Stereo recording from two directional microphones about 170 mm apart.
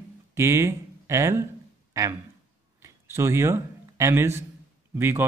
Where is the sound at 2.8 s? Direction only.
15° right (ahead or behind).